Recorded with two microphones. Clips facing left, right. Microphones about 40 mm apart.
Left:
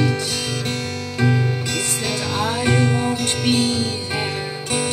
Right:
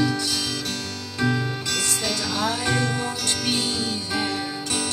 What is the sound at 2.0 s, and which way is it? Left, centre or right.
Music, left.